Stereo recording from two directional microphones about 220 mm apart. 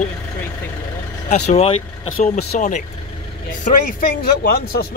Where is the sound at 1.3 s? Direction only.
30° left (ahead or behind).